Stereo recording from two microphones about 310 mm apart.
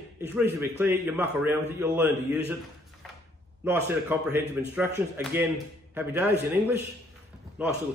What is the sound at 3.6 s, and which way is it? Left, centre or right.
A man's voice, centre.